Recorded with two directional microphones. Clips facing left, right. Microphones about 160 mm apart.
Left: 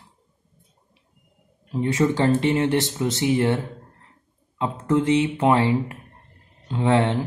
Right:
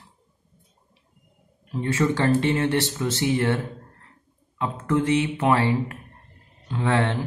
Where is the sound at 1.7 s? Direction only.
20° left (ahead or behind).